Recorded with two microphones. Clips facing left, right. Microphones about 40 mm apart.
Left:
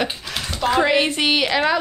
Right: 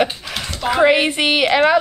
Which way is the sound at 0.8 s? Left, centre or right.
Centre.